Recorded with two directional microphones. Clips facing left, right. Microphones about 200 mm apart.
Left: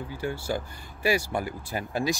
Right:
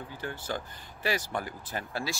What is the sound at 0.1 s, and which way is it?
Speech, 10° left (ahead or behind).